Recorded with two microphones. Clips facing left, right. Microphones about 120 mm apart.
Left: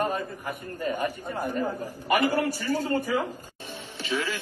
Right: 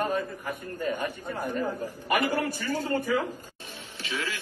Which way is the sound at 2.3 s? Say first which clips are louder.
Left 3 dB; 10° left (ahead or behind).